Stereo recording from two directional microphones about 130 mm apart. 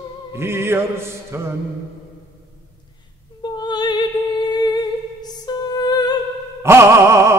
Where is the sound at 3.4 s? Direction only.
35° left (ahead or behind).